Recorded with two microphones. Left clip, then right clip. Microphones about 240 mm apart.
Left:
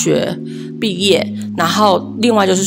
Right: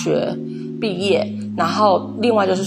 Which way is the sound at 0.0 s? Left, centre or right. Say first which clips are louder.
Left 4 dB; left.